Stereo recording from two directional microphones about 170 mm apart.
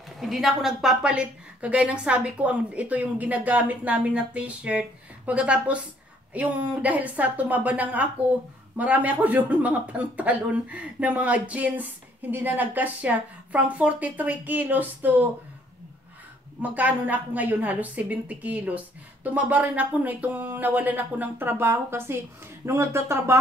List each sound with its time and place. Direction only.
0.2 s a woman's voice: centre (ahead or behind)
16.6 s a woman's voice: 10° right (ahead or behind)